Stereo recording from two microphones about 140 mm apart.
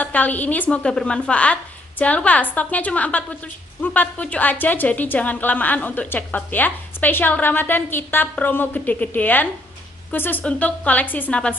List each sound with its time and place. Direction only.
0.0 s a woman's voice: 10° left (ahead or behind)